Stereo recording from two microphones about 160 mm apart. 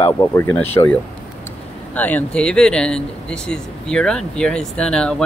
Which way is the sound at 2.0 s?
10° left (ahead or behind).